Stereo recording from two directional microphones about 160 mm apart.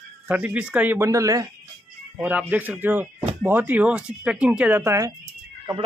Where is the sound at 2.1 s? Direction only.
10° right (ahead or behind).